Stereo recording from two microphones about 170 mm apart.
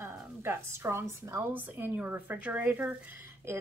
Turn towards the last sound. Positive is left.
turn(degrees=-10)  # may be behind; listen again after turning